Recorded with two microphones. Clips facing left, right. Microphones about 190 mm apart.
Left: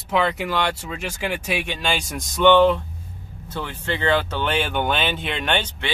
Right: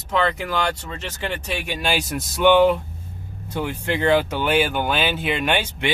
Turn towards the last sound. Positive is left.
turn(degrees=-10)  # may be behind; listen again after turning